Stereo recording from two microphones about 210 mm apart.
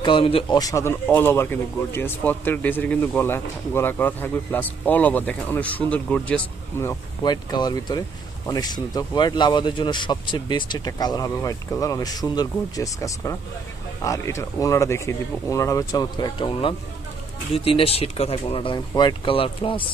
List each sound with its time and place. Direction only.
0.0 s speech: 25° left (ahead or behind)